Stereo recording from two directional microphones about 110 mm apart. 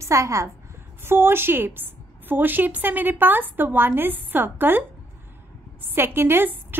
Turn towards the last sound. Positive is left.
turn(degrees=-20)  # may be behind; listen again after turning